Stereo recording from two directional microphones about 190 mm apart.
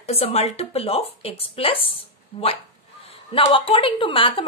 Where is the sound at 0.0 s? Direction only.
35° left (ahead or behind).